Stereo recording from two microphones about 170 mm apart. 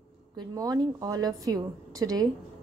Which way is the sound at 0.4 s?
20° right (ahead or behind).